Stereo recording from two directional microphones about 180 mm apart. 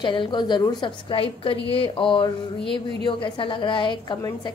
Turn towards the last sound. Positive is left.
turn(degrees=25)  # may be behind; listen again after turning